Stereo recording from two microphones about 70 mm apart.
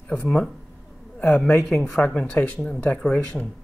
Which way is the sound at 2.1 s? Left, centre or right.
Left.